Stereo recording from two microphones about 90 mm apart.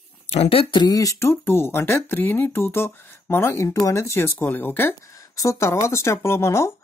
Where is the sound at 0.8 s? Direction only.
40° left (ahead or behind); by 4.9 s 25° left (ahead or behind).